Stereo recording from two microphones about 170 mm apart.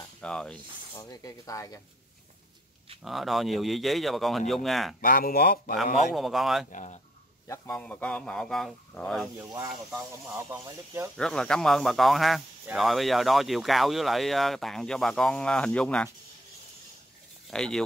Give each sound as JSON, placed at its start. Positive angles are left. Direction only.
{"t": 0.2, "sound": "speech", "side_deg": 5}
{"t": 0.9, "sound": "speech", "side_deg": 20}
{"t": 3.0, "sound": "speech", "side_deg": 0}
{"t": 5.0, "sound": "speech", "side_deg": 60}
{"t": 6.1, "sound": "speech", "side_deg": 0}
{"t": 6.7, "sound": "speech", "side_deg": 45}
{"t": 7.4, "sound": "a man's voice", "side_deg": 15}
{"t": 9.4, "sound": "speech", "side_deg": -15}
{"t": 9.8, "sound": "speech", "side_deg": 0}
{"t": 10.3, "sound": "speech", "side_deg": -15}
{"t": 11.1, "sound": "speech", "side_deg": 5}
{"t": 17.5, "sound": "speech", "side_deg": 5}